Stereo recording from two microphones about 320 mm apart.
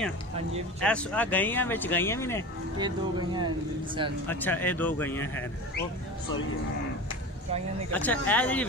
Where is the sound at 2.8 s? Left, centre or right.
Centre.